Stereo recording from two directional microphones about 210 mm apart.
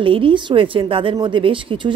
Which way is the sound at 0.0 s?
25° right (ahead or behind).